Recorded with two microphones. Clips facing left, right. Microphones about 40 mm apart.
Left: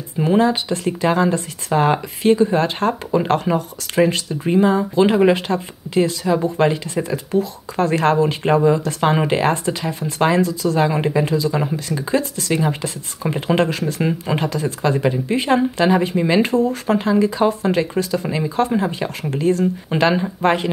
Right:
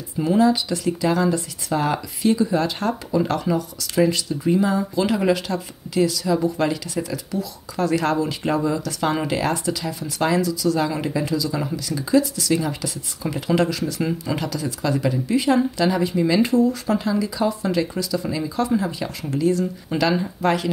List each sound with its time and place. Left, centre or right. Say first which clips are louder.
0.2 s speech: left 2 dB; left